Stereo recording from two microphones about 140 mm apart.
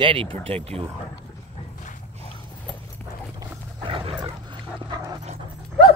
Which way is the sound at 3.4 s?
40° right (ahead or behind).